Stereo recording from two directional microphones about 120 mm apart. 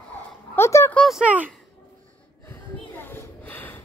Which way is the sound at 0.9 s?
5° left (ahead or behind).